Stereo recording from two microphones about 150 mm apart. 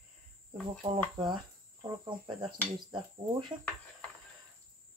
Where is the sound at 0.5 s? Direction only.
30° right (ahead or behind).